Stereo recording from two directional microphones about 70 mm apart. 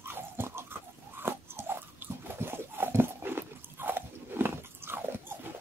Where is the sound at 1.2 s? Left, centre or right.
Right.